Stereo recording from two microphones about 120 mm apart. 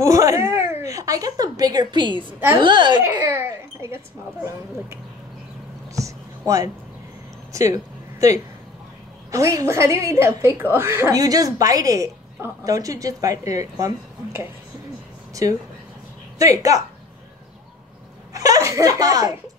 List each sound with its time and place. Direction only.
0.0 s a woman's voice: 25° right (ahead or behind); by 3.0 s 40° right (ahead or behind)
3.3 s a child's voice: 20° right (ahead or behind)
5.9 s a sound: 25° right (ahead or behind)
9.3 s a woman's voice: 25° right (ahead or behind)
18.3 s a woman's voice: 30° right (ahead or behind)